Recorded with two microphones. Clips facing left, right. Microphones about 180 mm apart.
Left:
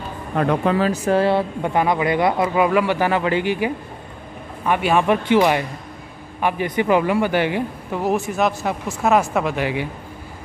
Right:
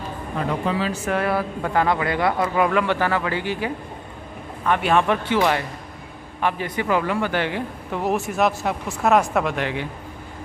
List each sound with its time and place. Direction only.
0.4 s speech: 60° left (ahead or behind)
1.0 s speech: 30° left (ahead or behind); by 7.6 s 15° left (ahead or behind)
7.9 s speech: centre (ahead or behind)